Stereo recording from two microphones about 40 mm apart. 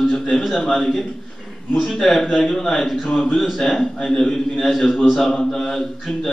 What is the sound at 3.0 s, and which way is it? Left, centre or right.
Speech, left.